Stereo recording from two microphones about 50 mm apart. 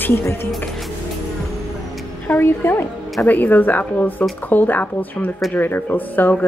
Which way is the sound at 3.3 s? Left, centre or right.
Left.